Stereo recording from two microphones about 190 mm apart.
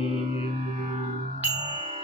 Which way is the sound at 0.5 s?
35° right (ahead or behind).